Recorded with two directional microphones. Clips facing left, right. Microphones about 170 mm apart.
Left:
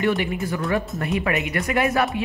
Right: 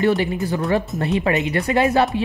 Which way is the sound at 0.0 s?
30° right (ahead or behind).